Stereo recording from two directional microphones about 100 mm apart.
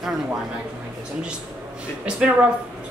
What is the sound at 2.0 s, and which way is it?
Speech, 10° right (ahead or behind).